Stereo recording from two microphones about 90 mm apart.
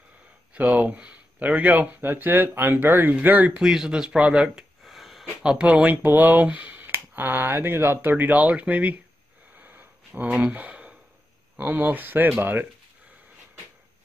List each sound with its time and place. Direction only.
0.6 s speech: 15° right (ahead or behind)
3.6 s speech: 5° right (ahead or behind)
9.6 s a sound: 20° right (ahead or behind)
11.5 s speech: 20° right (ahead or behind)